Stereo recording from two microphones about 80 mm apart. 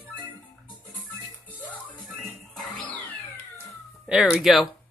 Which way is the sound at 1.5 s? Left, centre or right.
Centre.